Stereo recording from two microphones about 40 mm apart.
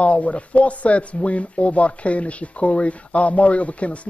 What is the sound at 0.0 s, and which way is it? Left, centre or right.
Speech, left.